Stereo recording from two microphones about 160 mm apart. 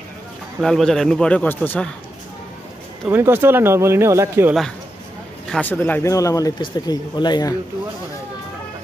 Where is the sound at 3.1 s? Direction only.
15° right (ahead or behind).